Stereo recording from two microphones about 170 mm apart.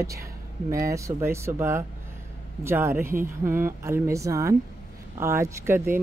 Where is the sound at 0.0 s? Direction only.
20° right (ahead or behind).